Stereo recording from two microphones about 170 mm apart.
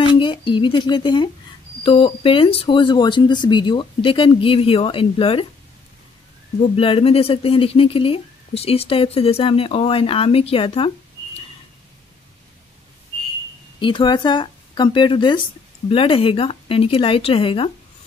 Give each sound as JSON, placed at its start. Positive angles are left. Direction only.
{"t": 0.0, "sound": "speech", "side_deg": 30}
{"t": 6.8, "sound": "speech", "side_deg": 35}
{"t": 13.7, "sound": "speech", "side_deg": 30}